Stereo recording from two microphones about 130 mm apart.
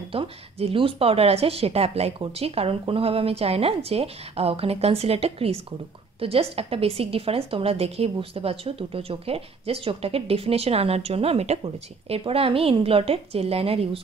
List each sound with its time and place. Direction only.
0.1 s speech: 45° right (ahead or behind)